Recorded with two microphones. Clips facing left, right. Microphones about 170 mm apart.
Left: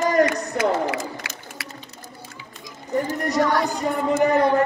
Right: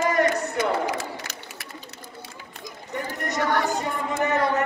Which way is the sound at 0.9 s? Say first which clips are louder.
Left 2 dB; 75° left (ahead or behind).